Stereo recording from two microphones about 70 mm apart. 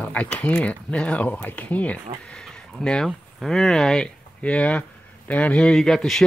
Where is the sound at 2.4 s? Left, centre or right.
Centre.